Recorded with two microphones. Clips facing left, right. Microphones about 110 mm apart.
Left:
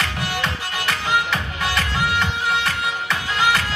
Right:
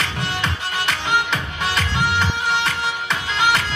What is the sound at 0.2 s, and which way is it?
Music, 25° right (ahead or behind).